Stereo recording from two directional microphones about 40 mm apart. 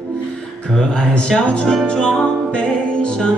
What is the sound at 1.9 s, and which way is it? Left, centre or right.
Music, centre.